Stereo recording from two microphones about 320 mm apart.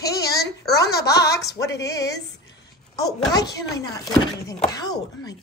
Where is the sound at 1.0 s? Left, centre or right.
Left.